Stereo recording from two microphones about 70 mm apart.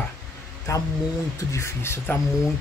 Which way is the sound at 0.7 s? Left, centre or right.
Left.